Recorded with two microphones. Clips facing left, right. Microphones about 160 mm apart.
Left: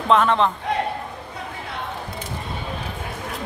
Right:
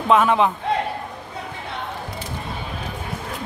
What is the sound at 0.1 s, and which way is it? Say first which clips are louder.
Speech: right 1 dB; 5° right (ahead or behind).